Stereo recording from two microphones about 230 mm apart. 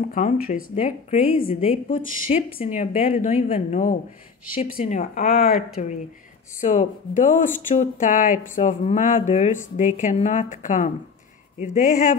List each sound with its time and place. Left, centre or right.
0.1 s speech: left
6.6 s speech: left